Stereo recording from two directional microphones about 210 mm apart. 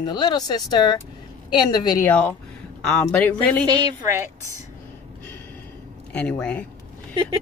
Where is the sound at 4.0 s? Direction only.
10° right (ahead or behind).